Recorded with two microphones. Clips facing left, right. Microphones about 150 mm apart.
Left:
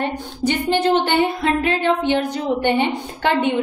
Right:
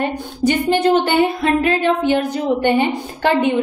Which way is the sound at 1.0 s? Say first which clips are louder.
Right 2 dB; 10° right (ahead or behind).